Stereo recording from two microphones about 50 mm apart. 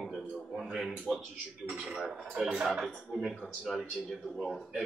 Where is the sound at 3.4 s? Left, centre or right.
Centre.